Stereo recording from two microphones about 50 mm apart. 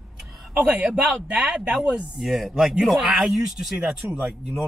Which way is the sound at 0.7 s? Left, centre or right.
Centre.